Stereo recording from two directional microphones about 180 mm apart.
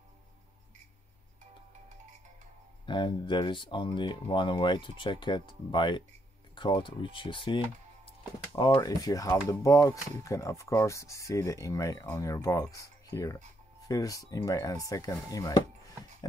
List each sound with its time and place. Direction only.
2.9 s speech: 25° left (ahead or behind)